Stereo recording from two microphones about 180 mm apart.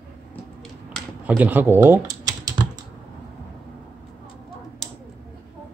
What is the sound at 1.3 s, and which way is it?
Speech, 10° right (ahead or behind).